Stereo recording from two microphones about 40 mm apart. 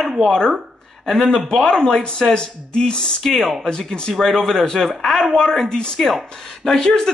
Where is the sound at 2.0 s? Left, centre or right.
Left.